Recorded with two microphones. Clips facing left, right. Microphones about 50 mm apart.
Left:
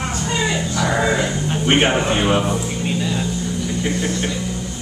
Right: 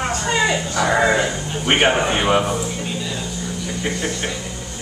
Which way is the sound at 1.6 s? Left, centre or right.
Centre.